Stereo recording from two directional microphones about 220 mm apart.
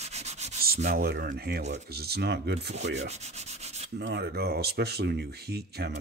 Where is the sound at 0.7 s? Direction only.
35° right (ahead or behind).